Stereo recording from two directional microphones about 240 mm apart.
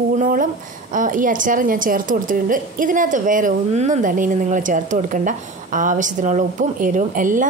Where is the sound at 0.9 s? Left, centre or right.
Right.